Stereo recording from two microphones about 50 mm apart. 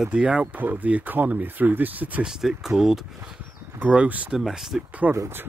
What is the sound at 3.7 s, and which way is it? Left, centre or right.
Speech, right.